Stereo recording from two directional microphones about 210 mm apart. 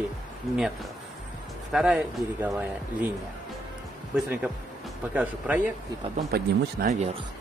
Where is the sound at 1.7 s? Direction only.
Centre (ahead or behind).